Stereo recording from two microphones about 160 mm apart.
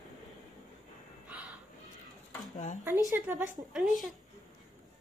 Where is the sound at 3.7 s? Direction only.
Centre (ahead or behind).